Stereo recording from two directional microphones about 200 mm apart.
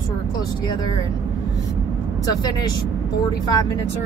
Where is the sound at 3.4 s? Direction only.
20° left (ahead or behind).